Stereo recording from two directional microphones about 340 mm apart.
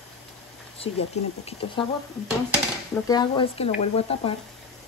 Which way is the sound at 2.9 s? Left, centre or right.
Centre.